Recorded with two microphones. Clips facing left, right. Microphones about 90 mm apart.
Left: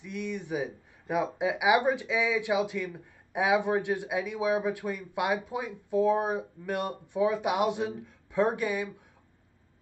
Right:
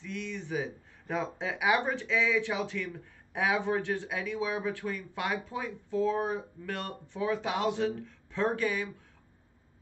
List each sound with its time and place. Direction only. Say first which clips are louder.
0.0 s speech: left 3 dB; 15° left (ahead or behind)